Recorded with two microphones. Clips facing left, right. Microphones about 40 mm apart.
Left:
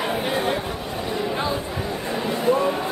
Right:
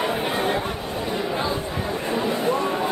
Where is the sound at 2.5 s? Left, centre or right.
Centre.